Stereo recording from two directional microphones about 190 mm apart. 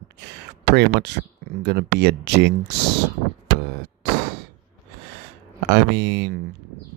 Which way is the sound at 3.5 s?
60° right (ahead or behind).